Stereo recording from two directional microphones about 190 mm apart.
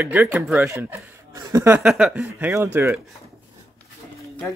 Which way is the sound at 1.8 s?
5° right (ahead or behind).